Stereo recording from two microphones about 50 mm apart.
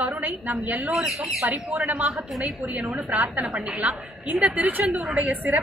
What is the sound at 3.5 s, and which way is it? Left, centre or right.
Speech, centre.